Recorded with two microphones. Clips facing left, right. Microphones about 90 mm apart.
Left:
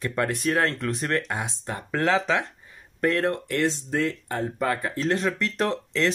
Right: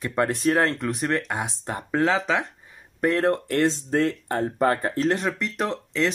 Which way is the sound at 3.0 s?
25° right (ahead or behind).